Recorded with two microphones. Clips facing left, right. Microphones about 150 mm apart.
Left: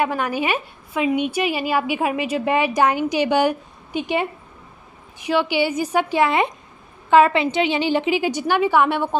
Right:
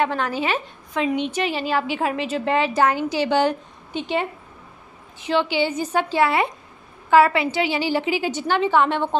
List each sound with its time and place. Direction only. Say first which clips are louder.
0.0 s a woman's voice: left 1 dB; 10° left (ahead or behind)